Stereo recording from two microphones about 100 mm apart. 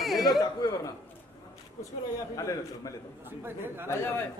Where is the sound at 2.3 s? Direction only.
35° left (ahead or behind).